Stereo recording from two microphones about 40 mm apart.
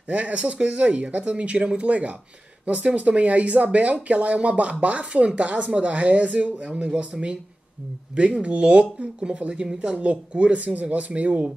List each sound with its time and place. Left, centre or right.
0.1 s speech: right